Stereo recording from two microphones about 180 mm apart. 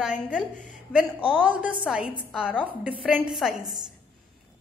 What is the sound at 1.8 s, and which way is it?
A woman's voice, 5° right (ahead or behind).